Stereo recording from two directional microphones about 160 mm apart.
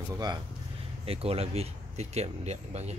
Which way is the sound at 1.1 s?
40° right (ahead or behind).